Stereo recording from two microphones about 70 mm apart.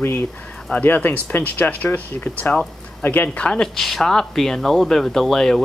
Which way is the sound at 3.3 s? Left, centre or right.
Centre.